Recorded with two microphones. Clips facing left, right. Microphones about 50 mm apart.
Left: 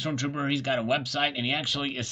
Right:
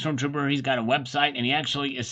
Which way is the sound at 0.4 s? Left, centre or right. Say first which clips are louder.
Right 2 dB; centre.